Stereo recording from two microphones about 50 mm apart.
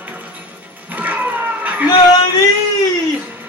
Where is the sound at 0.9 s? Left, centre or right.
Right.